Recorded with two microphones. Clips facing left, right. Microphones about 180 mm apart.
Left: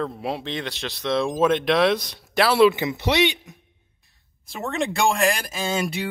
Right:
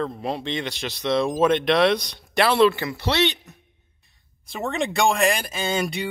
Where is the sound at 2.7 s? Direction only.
20° left (ahead or behind).